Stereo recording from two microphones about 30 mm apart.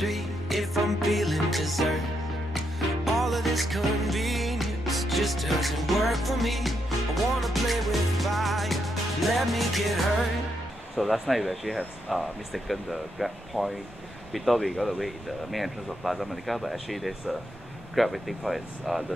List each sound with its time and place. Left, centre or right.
0.0 s music: centre
3.1 s music: centre
11.0 s speech: centre